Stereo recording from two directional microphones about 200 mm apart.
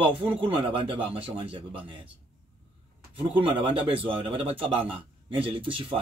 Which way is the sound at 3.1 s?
25° right (ahead or behind).